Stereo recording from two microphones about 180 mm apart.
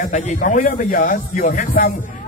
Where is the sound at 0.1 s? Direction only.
45° left (ahead or behind).